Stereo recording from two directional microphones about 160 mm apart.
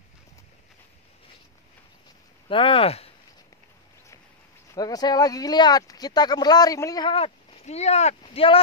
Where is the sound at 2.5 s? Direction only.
35° left (ahead or behind).